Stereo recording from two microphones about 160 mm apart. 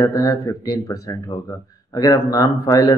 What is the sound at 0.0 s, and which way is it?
Speech, 20° left (ahead or behind).